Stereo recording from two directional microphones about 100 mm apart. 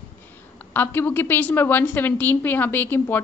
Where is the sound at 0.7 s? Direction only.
20° left (ahead or behind).